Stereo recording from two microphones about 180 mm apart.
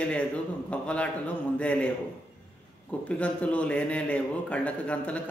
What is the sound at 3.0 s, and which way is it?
Speech, 5° left (ahead or behind).